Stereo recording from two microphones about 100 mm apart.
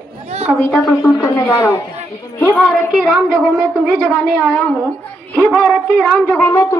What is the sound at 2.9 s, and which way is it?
Speech, centre (ahead or behind).